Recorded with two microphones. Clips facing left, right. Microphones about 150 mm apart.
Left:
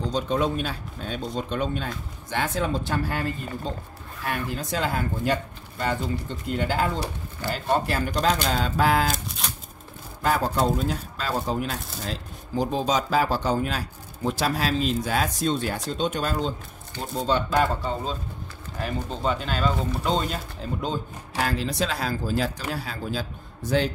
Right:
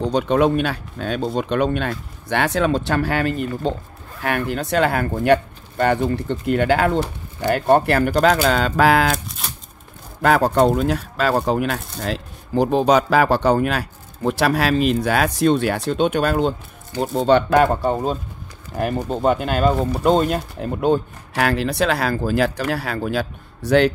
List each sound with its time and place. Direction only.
0.0 s speech: 70° right (ahead or behind)
10.2 s speech: 70° right (ahead or behind); by 18.1 s 55° right (ahead or behind)
18.7 s speech: 35° right (ahead or behind)
19.0 s speech: 55° right (ahead or behind); by 23.9 s 70° right (ahead or behind)